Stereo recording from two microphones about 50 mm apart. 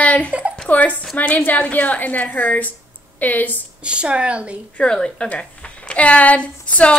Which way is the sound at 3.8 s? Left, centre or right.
Right.